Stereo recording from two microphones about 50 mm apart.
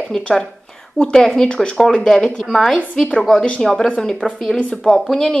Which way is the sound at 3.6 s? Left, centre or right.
Centre.